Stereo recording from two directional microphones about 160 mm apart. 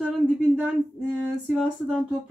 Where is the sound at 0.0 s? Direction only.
5° right (ahead or behind).